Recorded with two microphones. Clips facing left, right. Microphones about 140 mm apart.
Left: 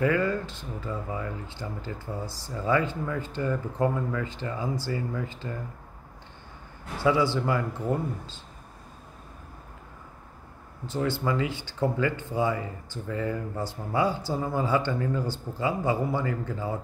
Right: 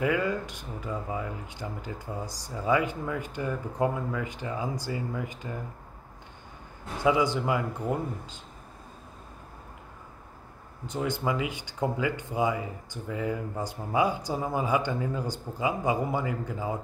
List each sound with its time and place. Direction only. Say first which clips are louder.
0.0 s speech: left 2 dB; 15° right (ahead or behind)
7.0 s speech: left 1 dB; 15° right (ahead or behind)
10.9 s speech: left 2 dB; 15° right (ahead or behind)